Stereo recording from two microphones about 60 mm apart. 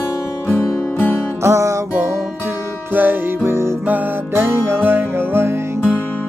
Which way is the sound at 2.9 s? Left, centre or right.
Right.